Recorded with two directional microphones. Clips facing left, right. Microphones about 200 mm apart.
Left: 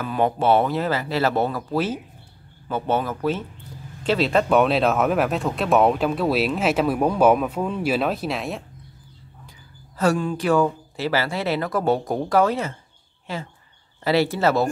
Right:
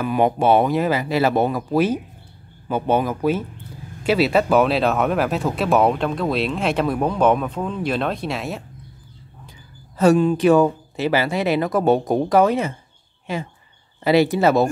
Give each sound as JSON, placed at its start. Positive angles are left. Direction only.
{"t": 0.0, "sound": "speech", "side_deg": -15}
{"t": 9.9, "sound": "speech", "side_deg": -20}